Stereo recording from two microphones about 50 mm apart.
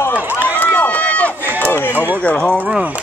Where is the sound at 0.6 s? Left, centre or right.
Left.